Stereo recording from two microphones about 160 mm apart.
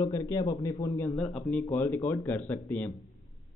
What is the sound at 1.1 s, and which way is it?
Speech, 5° left (ahead or behind).